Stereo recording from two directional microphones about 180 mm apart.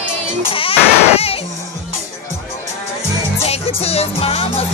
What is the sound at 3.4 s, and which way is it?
Music, 35° left (ahead or behind).